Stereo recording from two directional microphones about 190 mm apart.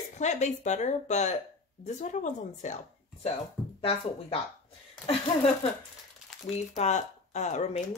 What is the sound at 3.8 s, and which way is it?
Speech, 30° left (ahead or behind).